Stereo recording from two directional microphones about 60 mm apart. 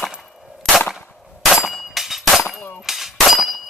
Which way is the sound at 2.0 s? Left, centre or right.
Centre.